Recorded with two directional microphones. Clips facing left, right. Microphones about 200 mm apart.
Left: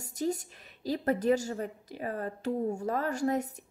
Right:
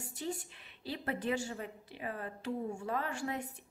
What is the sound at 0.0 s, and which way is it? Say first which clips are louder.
Speech: left 8 dB; 40° left (ahead or behind).